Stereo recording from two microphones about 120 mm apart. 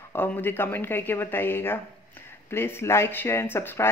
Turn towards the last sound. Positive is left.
turn(degrees=20)  # may be behind; listen again after turning